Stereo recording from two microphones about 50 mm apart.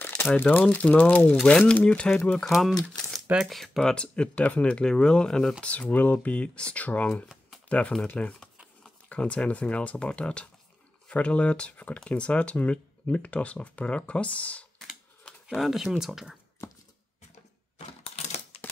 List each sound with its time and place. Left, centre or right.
0.2 s speech: left
1.4 s speech: left
2.4 s speech: centre
3.9 s speech: left
5.6 s speech: left
9.1 s speech: left
15.6 s speech: centre
16.6 s a sound: left